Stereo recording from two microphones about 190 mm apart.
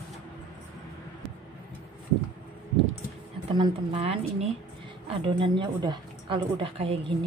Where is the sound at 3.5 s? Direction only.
30° right (ahead or behind).